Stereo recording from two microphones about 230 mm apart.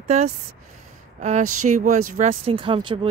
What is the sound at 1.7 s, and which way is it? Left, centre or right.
Speech, right.